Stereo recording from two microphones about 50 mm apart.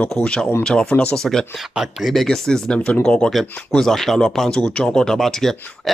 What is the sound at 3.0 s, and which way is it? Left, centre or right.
Speech, centre.